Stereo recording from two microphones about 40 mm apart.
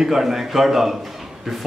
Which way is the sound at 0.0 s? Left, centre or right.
Centre.